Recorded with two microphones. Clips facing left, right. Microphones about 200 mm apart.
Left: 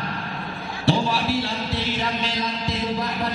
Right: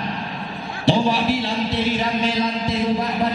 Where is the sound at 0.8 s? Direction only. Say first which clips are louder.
Right 4 dB; 20° right (ahead or behind).